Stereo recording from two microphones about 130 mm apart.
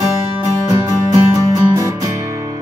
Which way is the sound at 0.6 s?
35° right (ahead or behind).